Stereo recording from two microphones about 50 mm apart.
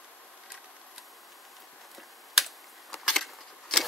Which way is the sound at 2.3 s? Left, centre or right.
Centre.